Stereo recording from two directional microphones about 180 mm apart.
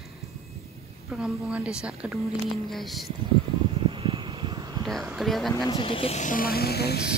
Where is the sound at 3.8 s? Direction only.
30° right (ahead or behind).